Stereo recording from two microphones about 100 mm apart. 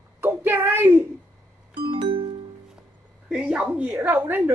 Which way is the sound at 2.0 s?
65° right (ahead or behind).